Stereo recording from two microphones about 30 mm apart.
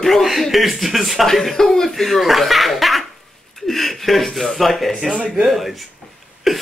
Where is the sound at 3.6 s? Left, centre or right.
Centre.